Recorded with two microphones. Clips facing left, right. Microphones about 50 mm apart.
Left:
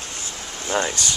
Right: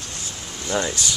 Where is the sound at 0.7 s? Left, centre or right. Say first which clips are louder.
Left 1 dB; left.